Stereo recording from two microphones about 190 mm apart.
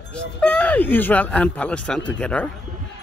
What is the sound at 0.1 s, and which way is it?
Speech, 5° left (ahead or behind).